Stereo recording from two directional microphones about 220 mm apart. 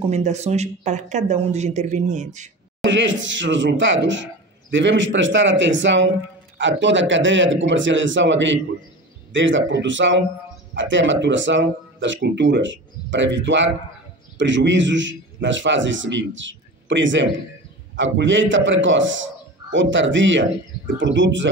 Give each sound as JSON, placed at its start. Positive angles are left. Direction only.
{"t": 0.1, "sound": "speech", "side_deg": -30}
{"t": 2.8, "sound": "speech", "side_deg": -55}